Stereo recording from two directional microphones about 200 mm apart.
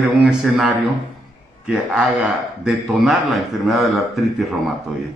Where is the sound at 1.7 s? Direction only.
5° right (ahead or behind).